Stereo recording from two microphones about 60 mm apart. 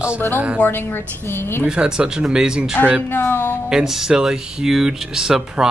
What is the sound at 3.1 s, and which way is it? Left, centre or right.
Speech, left.